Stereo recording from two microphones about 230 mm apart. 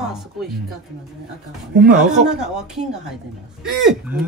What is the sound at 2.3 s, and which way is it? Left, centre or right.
Speech, centre.